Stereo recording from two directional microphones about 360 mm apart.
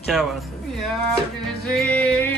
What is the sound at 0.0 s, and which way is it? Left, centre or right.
Speech, centre.